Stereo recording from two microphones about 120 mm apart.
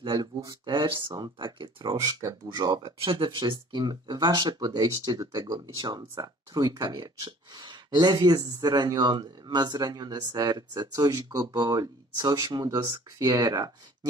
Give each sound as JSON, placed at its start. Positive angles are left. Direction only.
{"t": 0.1, "sound": "speech", "side_deg": -30}